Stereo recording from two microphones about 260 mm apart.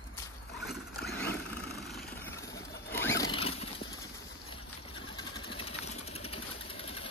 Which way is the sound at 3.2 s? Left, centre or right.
Centre.